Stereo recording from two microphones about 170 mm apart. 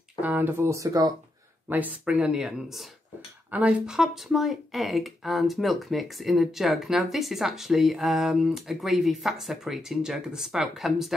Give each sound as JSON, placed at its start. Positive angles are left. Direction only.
{"t": 0.2, "sound": "speech", "side_deg": -10}
{"t": 1.7, "sound": "speech", "side_deg": -10}